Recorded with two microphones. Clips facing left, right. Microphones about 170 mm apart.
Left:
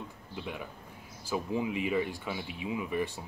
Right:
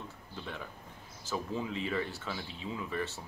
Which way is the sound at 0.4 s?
10° left (ahead or behind).